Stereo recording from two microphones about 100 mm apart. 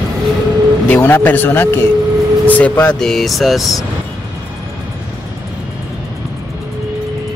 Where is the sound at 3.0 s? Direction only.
5° left (ahead or behind).